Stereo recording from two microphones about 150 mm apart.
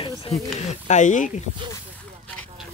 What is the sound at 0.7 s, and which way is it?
Speech, 55° left (ahead or behind).